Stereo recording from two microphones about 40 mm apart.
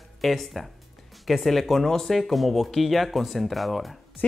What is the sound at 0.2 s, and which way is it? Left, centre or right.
Speech, centre.